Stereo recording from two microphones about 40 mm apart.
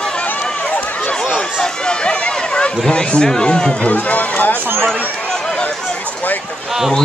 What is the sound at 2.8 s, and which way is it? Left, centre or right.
Speech, left.